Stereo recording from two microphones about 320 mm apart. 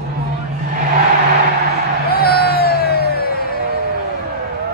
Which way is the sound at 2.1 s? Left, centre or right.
Left.